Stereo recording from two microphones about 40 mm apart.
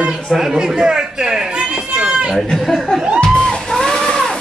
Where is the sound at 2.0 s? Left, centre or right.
Right.